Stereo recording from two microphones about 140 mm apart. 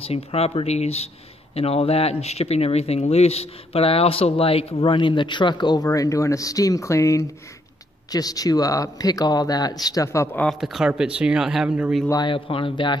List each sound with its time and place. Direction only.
0.0 s speech: 45° left (ahead or behind); by 10.5 s 15° left (ahead or behind)
10.6 s speech: 5° right (ahead or behind)
12.1 s speech: 35° left (ahead or behind)